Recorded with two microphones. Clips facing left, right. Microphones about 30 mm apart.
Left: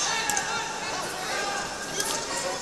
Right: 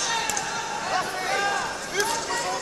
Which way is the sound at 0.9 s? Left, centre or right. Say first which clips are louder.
Right 8 dB; right.